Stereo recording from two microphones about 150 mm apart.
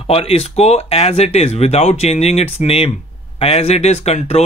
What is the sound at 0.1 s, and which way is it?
Speech, 40° left (ahead or behind).